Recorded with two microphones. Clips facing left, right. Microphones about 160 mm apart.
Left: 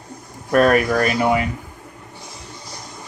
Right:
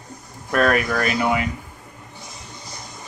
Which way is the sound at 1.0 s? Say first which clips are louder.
Left 3 dB; 40° left (ahead or behind).